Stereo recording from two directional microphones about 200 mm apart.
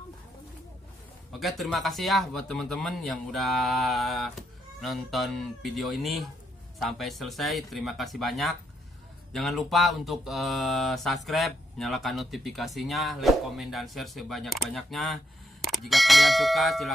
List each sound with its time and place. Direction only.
1.6 s speech: centre (ahead or behind)